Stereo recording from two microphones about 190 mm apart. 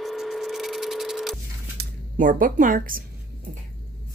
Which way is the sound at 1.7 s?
45° right (ahead or behind).